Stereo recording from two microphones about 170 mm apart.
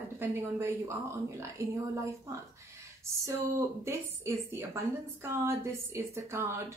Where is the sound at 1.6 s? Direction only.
15° right (ahead or behind).